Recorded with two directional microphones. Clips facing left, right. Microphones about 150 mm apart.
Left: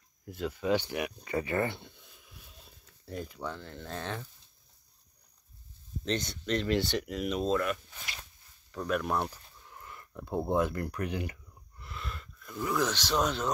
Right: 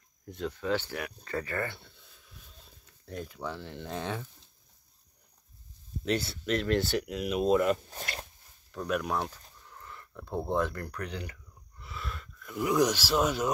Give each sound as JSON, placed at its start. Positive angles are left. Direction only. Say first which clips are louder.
{"t": 0.2, "sound": "speech", "louder": "left 1 dB", "side_deg": 5}
{"t": 2.6, "sound": "speech", "louder": "left 1 dB", "side_deg": 0}
{"t": 6.0, "sound": "speech", "louder": "right 2 dB", "side_deg": -5}
{"t": 7.5, "sound": "speech", "louder": "right 8 dB", "side_deg": -25}
{"t": 7.9, "sound": "a sound", "louder": "right 7 dB", "side_deg": -50}
{"t": 8.7, "sound": "speech", "louder": "even", "side_deg": 0}
{"t": 9.3, "sound": "speech", "louder": "even", "side_deg": 10}
{"t": 11.8, "sound": "a sound", "louder": "right 1 dB", "side_deg": 0}
{"t": 12.5, "sound": "speech", "louder": "right 4 dB", "side_deg": -15}